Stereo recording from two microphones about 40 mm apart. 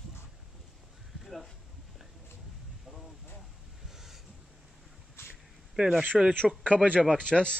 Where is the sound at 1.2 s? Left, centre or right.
Centre.